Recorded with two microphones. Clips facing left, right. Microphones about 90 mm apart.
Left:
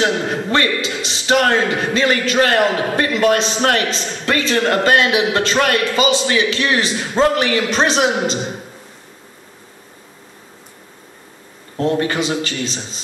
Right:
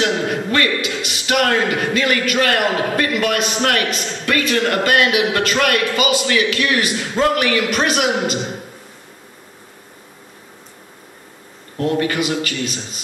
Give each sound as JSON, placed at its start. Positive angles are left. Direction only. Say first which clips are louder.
{"t": 0.5, "sound": "a man's voice", "louder": "left 3 dB", "side_deg": 30}
{"t": 11.7, "sound": "a man's voice", "louder": "left 1 dB", "side_deg": 30}